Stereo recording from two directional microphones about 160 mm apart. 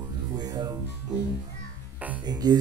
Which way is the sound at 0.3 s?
25° right (ahead or behind).